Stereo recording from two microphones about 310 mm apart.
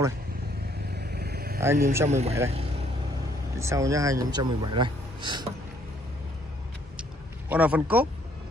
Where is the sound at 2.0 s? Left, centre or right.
Right.